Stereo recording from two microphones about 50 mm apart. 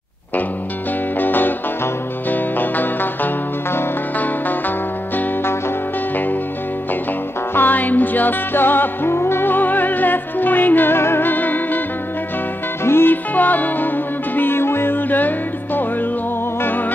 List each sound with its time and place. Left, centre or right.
1.2 s music: left
7.5 s music: left
12.8 s music: left
13.1 s music: left
14.3 s music: left